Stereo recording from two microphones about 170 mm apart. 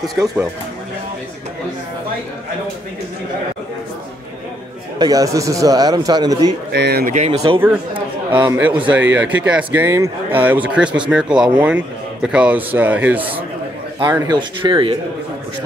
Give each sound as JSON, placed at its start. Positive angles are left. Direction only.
{"t": 4.9, "sound": "a man's voice", "side_deg": -25}
{"t": 6.7, "sound": "speech", "side_deg": -75}
{"t": 7.1, "sound": "speech", "side_deg": -40}
{"t": 7.6, "sound": "a man's voice", "side_deg": -10}
{"t": 14.1, "sound": "a man's voice", "side_deg": -25}